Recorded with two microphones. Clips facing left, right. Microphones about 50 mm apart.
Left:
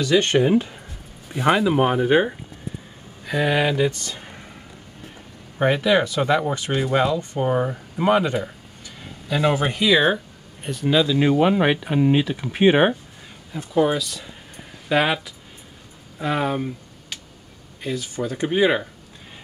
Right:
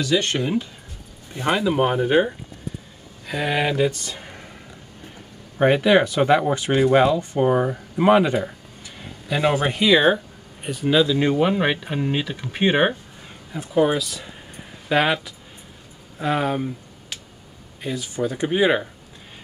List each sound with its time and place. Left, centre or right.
0.1 s speech: left
1.3 s speech: centre
4.0 s a sound: centre
5.6 s speech: centre
6.7 s speech: centre
7.3 s speech: centre
8.0 s speech: centre
9.3 s speech: centre
13.5 s speech: centre
17.8 s speech: centre